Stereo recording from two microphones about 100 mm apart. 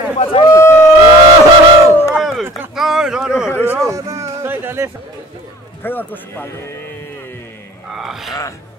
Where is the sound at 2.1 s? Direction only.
Centre (ahead or behind).